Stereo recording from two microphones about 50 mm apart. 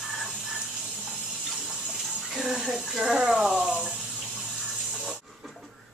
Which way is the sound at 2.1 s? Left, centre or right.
Centre.